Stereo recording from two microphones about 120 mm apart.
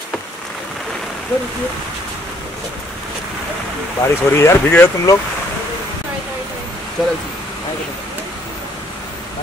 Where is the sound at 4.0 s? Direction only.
20° left (ahead or behind).